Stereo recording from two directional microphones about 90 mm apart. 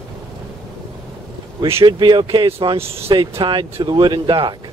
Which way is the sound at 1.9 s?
60° right (ahead or behind).